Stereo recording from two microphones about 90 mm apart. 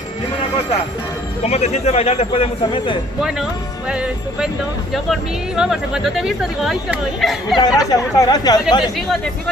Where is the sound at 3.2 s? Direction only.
10° right (ahead or behind).